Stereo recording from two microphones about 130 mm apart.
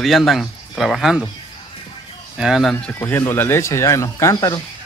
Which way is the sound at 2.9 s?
20° left (ahead or behind).